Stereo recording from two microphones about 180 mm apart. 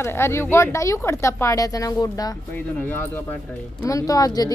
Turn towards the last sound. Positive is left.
turn(degrees=20)  # may be behind; listen again after turning